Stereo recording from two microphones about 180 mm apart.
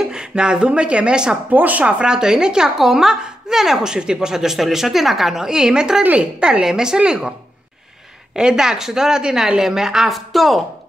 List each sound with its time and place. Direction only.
0.0 s a woman's voice: 5° right (ahead or behind)
8.4 s a woman's voice: 5° right (ahead or behind)